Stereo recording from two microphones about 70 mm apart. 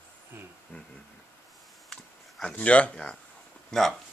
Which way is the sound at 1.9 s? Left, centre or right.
Centre.